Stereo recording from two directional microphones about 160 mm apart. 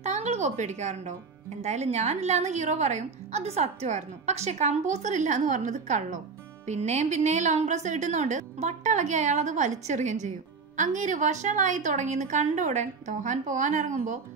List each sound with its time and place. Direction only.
0.0 s a woman's voice: 45° right (ahead or behind)